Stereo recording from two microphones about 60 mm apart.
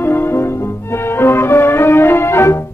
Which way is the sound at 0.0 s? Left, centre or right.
Left.